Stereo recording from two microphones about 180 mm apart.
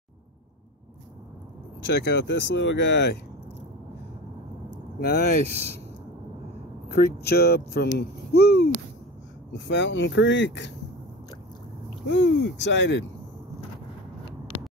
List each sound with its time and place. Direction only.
1.9 s speech: 75° left (ahead or behind)
5.0 s speech: 60° left (ahead or behind)
6.9 s speech: 60° left (ahead or behind)
9.5 s speech: 80° left
12.1 s speech: 85° left